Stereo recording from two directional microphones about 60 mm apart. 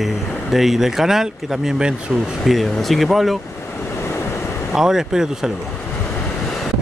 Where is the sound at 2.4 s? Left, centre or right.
Centre.